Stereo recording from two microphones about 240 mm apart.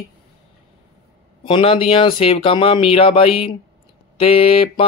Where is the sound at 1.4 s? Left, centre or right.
Left.